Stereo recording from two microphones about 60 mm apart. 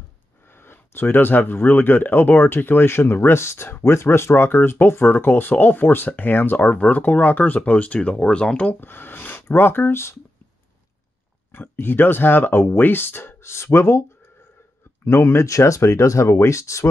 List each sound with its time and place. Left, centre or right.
0.5 s speech: left; by 8.7 s centre
8.8 s speech: left
11.5 s speech: left
13.4 s speech: left
15.0 s speech: left
15.4 s speech: left